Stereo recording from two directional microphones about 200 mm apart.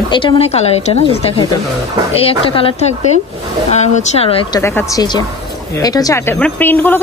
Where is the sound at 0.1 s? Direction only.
25° left (ahead or behind).